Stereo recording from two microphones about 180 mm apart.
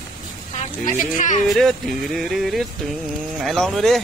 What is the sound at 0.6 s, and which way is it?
Speech, 45° left (ahead or behind).